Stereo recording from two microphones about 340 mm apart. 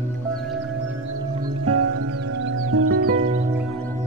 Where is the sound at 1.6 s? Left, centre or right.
Right.